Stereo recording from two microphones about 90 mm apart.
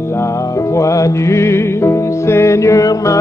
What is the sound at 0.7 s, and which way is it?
Music, 35° left (ahead or behind).